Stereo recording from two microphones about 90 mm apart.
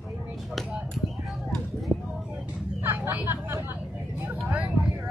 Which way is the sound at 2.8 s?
30° right (ahead or behind).